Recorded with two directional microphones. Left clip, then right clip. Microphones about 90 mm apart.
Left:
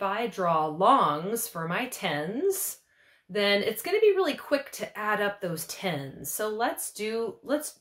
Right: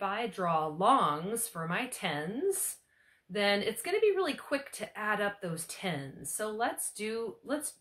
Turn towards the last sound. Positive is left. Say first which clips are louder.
# left 6 dB
turn(degrees=30)  # may be behind; listen again after turning